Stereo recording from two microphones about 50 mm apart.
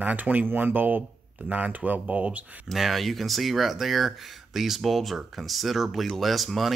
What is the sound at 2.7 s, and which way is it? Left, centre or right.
Speech, centre.